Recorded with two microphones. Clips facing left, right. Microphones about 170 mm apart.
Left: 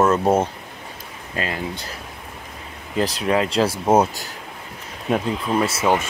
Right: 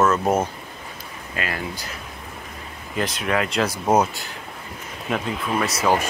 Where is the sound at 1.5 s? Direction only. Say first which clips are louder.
Left 2 dB; 25° left (ahead or behind).